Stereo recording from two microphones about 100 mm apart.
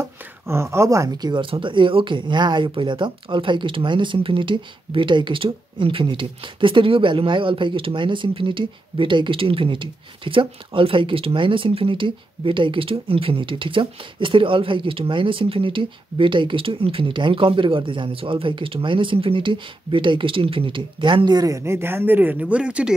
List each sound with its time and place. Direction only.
0.0 s speech: 25° right (ahead or behind); by 21.4 s 55° right (ahead or behind)
21.4 s speech: 30° right (ahead or behind); by 22.9 s 10° right (ahead or behind)